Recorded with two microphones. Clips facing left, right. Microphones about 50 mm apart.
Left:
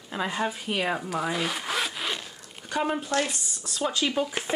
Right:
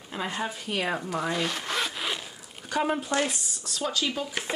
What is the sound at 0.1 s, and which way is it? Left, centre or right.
Speech, centre.